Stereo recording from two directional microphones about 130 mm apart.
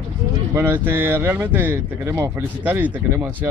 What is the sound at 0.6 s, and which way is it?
Speech, 15° right (ahead or behind).